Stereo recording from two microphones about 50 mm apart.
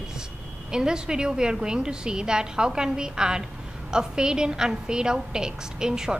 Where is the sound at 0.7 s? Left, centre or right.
Centre.